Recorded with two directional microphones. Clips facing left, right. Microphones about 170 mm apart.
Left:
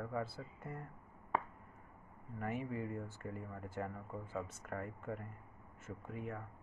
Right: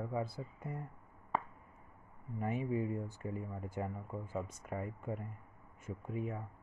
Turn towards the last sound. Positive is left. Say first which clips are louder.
# right 4 dB
turn(degrees=-15)  # may be behind; listen again after turning